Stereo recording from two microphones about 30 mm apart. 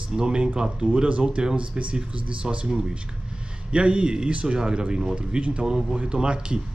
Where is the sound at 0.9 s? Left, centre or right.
Right.